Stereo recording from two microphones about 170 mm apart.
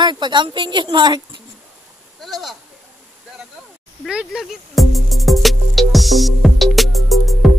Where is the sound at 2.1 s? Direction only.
Centre (ahead or behind).